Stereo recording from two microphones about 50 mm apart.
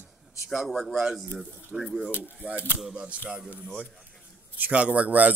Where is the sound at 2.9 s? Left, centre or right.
Right.